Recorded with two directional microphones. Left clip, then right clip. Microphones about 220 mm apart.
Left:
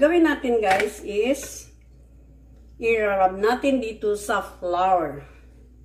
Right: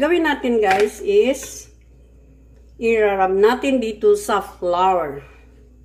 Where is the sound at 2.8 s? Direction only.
40° right (ahead or behind).